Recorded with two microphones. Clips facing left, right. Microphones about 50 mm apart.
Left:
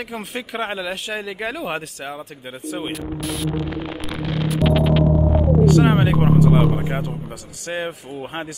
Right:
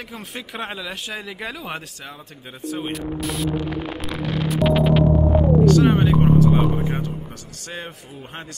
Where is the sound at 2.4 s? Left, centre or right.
Centre.